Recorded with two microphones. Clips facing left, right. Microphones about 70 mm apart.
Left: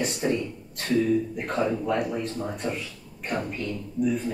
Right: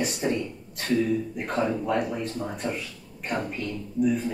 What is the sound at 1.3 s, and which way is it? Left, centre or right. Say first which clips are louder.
A man's voice: even; centre.